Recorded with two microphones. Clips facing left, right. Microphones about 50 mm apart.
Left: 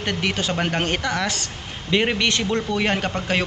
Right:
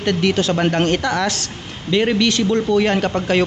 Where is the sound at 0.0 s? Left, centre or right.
Centre.